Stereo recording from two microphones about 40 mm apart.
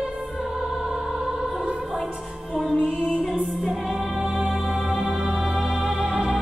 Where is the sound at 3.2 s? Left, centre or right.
Centre.